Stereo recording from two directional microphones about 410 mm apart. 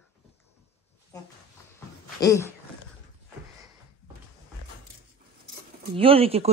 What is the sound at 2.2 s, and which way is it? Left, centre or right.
Speech, centre.